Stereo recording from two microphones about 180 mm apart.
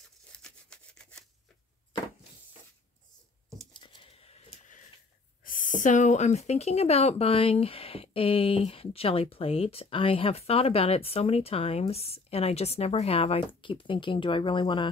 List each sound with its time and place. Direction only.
0.3 s sawing: 5° left (ahead or behind)
3.7 s a sound: 25° left (ahead or behind)
5.4 s speech: 50° left (ahead or behind); by 14.9 s 25° left (ahead or behind)